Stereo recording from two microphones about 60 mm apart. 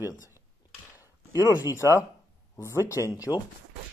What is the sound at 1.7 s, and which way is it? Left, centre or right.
Speech, left.